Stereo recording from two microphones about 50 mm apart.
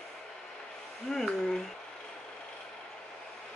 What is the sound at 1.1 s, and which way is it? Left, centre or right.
Speech, centre.